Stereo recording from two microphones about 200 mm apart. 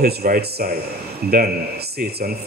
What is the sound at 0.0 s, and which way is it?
Speech, 50° right (ahead or behind).